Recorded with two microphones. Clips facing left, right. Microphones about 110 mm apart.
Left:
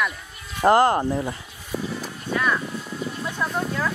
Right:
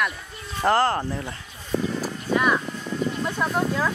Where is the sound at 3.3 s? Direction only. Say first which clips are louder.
Right 1 dB; 10° right (ahead or behind).